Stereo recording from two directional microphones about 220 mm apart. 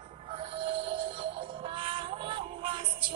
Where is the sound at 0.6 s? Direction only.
25° right (ahead or behind).